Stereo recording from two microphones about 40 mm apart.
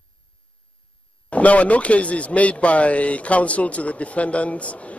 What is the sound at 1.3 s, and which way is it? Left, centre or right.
Speech, left.